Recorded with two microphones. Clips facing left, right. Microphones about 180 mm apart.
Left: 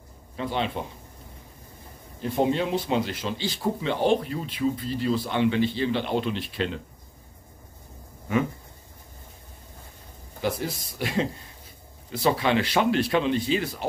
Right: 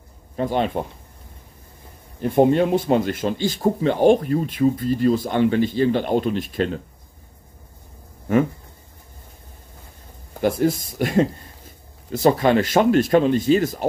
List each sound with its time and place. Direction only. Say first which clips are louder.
0.4 s speech: right 6 dB; 45° right (ahead or behind)
2.2 s speech: right 8 dB; 55° right (ahead or behind)
10.4 s speech: right 9 dB; 50° right (ahead or behind)